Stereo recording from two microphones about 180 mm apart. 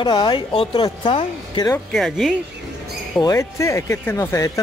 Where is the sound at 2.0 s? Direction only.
Centre (ahead or behind).